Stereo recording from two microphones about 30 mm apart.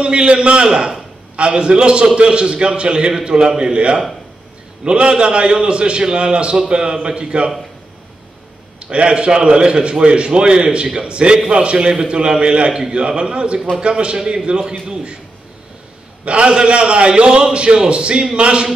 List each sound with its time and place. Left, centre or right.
0.0 s a man's voice: right
8.9 s a man's voice: right
16.3 s a man's voice: right